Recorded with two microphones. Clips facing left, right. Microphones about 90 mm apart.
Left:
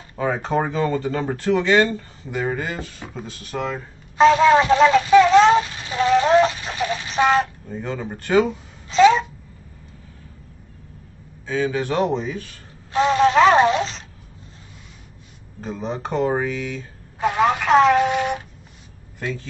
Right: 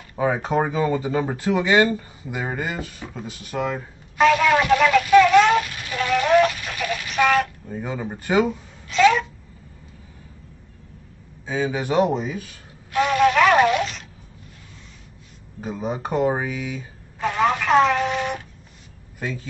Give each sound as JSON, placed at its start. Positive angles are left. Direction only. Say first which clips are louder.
{"t": 0.1, "sound": "speech", "louder": "even", "side_deg": -10}
{"t": 4.2, "sound": "a sound", "louder": "left 4 dB", "side_deg": 25}
{"t": 7.6, "sound": "speech", "louder": "even", "side_deg": -10}
{"t": 8.8, "sound": "babbling", "louder": "left 3 dB", "side_deg": 25}
{"t": 11.4, "sound": "speech", "louder": "left 2 dB", "side_deg": -15}
{"t": 12.9, "sound": "a sound", "louder": "left 2 dB", "side_deg": 25}
{"t": 15.6, "sound": "speech", "louder": "even", "side_deg": -10}
{"t": 17.2, "sound": "telephone dialing", "louder": "left 2 dB", "side_deg": 10}
{"t": 19.1, "sound": "a man's voice", "louder": "left 1 dB", "side_deg": -5}